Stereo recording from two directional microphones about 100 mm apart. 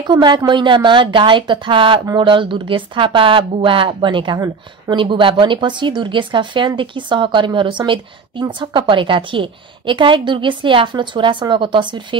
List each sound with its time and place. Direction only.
0.0 s speech: 45° right (ahead or behind)
4.4 s speech: 45° right (ahead or behind)
5.0 s speech: 55° right (ahead or behind)